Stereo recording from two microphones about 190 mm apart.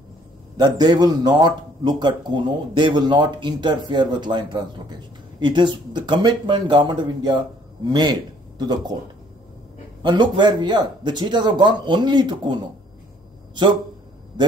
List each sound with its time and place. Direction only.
0.6 s a man's voice: 20° right (ahead or behind)
10.0 s a man's voice: 25° right (ahead or behind)